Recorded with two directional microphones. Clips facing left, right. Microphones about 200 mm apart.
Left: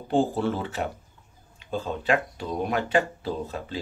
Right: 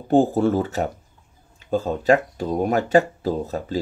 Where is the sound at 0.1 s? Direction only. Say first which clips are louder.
Right 7 dB; 45° right (ahead or behind).